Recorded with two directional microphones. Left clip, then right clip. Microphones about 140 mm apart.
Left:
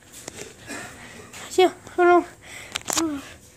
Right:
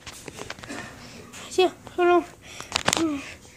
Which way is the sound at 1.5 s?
15° left (ahead or behind).